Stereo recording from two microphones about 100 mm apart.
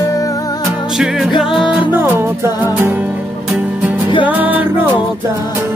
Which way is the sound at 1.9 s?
20° right (ahead or behind).